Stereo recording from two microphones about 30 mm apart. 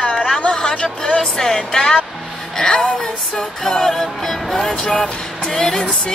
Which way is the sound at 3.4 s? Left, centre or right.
Centre.